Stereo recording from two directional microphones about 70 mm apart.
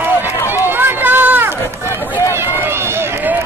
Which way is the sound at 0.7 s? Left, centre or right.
Right.